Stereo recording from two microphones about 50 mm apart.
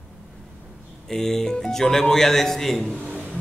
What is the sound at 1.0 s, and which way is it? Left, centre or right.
A man's voice, centre.